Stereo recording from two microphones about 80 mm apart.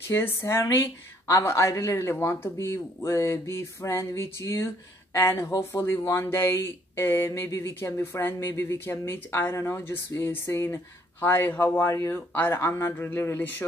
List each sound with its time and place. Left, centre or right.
0.1 s speech: left